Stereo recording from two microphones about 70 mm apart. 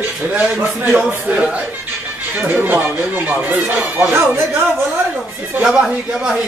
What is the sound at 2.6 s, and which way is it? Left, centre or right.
Speech, right.